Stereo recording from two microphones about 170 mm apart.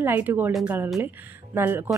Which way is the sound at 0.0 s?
10° right (ahead or behind).